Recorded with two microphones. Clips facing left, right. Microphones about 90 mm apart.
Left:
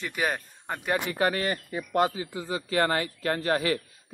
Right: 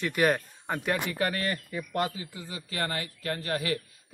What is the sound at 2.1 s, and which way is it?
Speech, 30° left (ahead or behind).